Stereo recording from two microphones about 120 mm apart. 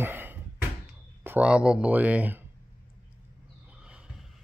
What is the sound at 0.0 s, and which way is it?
Bouncing, 20° right (ahead or behind).